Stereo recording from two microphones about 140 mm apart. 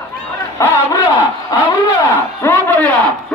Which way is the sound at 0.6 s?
20° left (ahead or behind).